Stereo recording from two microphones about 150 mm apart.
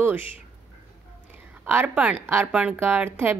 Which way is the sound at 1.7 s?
10° right (ahead or behind).